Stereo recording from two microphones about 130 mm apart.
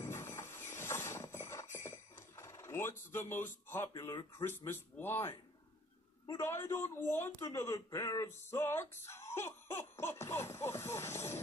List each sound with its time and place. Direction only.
0.0 s a sound: 20° left (ahead or behind)
4.1 s speech: 30° left (ahead or behind)
4.5 s speech: 15° left (ahead or behind)
8.5 s speech: 20° left (ahead or behind)